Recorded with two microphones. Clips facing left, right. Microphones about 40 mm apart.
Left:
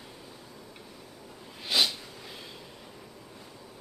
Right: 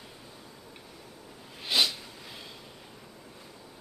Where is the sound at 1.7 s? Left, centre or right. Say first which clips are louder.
Even; centre.